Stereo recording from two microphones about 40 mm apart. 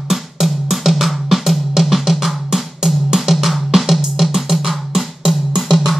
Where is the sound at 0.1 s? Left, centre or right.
Centre.